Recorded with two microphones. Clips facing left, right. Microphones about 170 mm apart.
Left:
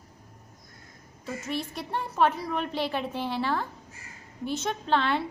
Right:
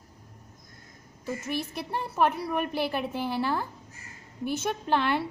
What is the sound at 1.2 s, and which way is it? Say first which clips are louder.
A woman's voice: right 1 dB; 5° right (ahead or behind).